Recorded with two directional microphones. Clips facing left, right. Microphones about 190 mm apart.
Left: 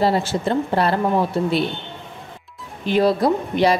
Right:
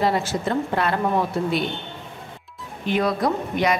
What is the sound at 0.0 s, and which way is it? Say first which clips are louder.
Speech: left 3 dB; 30° left (ahead or behind).